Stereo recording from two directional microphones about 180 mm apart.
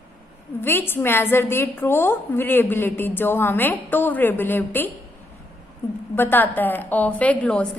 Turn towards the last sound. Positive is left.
turn(degrees=5)  # may be behind; listen again after turning